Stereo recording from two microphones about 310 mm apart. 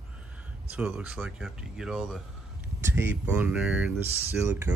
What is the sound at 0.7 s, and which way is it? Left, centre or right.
Speech, centre.